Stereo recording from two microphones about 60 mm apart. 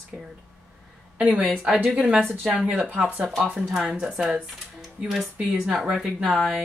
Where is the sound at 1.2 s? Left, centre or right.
Centre.